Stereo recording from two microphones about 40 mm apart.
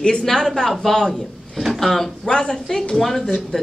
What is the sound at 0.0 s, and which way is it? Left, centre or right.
Speech, centre.